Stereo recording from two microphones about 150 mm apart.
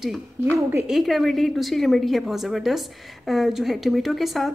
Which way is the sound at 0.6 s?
15° right (ahead or behind).